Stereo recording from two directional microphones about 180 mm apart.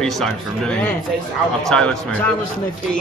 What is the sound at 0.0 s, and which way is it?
Speech, 5° left (ahead or behind).